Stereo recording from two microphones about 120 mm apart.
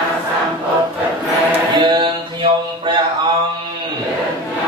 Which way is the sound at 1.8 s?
40° right (ahead or behind).